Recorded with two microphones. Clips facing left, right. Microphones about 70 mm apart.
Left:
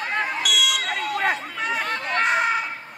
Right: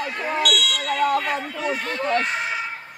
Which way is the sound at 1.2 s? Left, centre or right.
Left.